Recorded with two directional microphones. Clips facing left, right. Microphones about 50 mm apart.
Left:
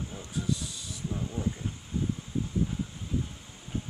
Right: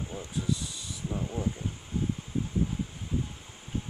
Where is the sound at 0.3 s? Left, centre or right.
Centre.